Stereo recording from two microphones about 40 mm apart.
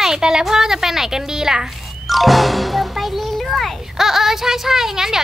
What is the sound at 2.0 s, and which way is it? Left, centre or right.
A child's voice, centre.